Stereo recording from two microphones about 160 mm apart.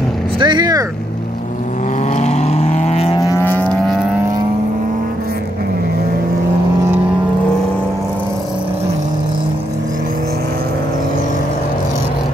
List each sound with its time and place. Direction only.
0.4 s speech: 30° right (ahead or behind)
2.1 s vehicle: 45° left (ahead or behind)
3.2 s vehicle: 20° left (ahead or behind)